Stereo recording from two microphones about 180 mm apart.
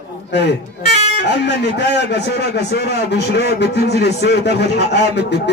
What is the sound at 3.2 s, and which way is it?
A man's voice, 70° left (ahead or behind).